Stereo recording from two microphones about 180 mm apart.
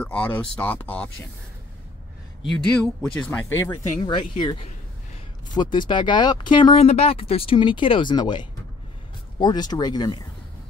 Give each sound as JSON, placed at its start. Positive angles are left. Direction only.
{"t": 0.0, "sound": "speech", "side_deg": 10}
{"t": 2.5, "sound": "speech", "side_deg": 5}
{"t": 4.0, "sound": "speech", "side_deg": 25}